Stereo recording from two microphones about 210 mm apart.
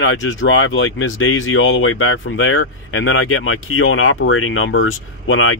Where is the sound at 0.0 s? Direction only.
70° left (ahead or behind).